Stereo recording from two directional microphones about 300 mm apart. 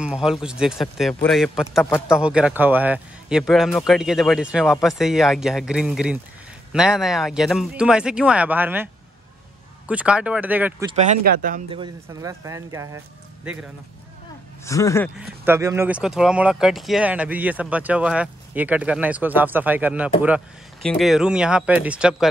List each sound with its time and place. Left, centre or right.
0.0 s speech: centre
9.8 s speech: centre
10.9 s speech: right
14.6 s speech: centre
15.4 s speech: centre